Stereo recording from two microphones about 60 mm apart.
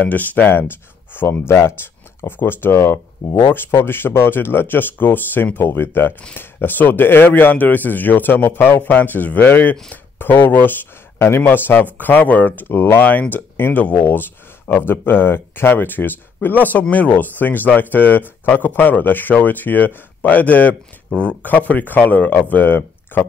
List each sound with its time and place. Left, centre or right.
0.0 s speech: left
13.0 s speech: left